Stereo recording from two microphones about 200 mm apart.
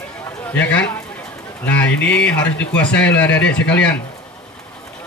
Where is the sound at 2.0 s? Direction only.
60° left (ahead or behind).